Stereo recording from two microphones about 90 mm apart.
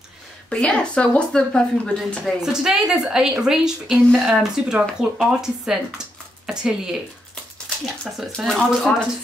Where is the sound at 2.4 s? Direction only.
5° right (ahead or behind).